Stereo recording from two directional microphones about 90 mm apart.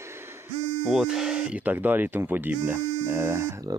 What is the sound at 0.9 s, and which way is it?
Speech, 5° right (ahead or behind).